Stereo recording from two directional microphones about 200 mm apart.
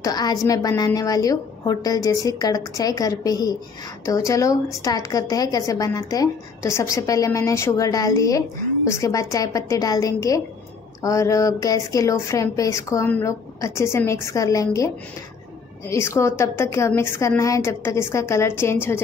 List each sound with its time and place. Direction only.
0.0 s a woman's voice: 20° left (ahead or behind)
15.9 s a woman's voice: 15° left (ahead or behind)